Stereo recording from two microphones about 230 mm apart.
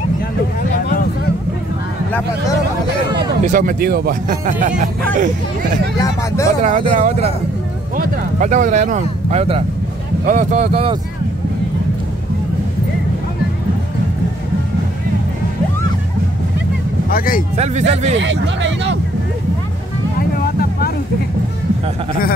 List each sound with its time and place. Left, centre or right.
0.6 s a sound: left
3.2 s speech: right
5.9 s speech: centre
6.6 s speech: right
17.1 s speech: left
17.6 s speech: right
18.1 s speech: right
20.2 s vehicle: left